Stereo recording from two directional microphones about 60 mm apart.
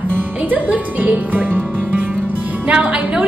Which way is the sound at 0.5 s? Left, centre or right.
Right.